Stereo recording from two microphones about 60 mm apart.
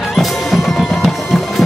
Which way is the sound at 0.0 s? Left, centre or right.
Centre.